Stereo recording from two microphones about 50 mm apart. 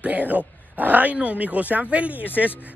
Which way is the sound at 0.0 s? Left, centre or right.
Right.